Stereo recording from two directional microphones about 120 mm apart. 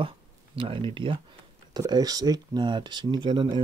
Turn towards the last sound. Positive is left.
turn(degrees=-40)  # may be behind; listen again after turning